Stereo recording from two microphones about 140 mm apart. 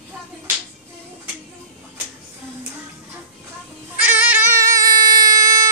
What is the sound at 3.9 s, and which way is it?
Music, 10° right (ahead or behind).